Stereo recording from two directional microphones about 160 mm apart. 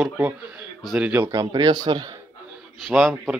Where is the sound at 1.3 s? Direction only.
25° right (ahead or behind).